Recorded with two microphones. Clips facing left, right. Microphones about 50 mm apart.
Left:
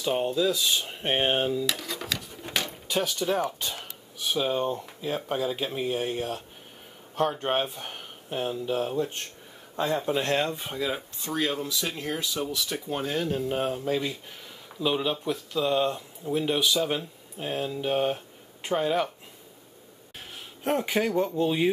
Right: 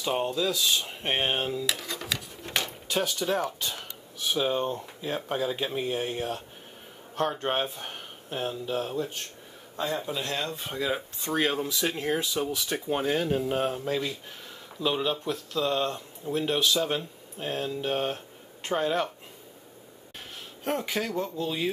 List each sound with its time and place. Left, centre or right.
0.0 s speech: centre
9.8 s speech: left
10.5 s speech: centre
11.2 s speech: right; by 19.0 s centre
20.8 s speech: centre